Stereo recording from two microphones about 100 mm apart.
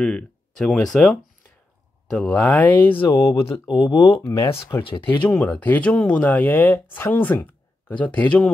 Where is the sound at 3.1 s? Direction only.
30° left (ahead or behind).